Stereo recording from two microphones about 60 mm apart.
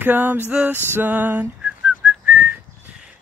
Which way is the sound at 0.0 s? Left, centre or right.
Right.